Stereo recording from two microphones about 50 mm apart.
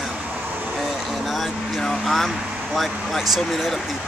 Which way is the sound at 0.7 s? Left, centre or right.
Centre.